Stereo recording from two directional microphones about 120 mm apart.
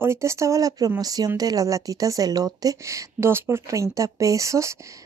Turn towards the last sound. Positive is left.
turn(degrees=-25)  # may be behind; listen again after turning